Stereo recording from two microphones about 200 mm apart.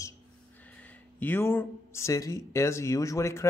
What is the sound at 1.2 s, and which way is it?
Speech, 10° left (ahead or behind).